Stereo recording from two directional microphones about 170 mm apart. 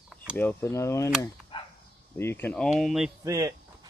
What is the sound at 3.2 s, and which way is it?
Speech, 20° right (ahead or behind).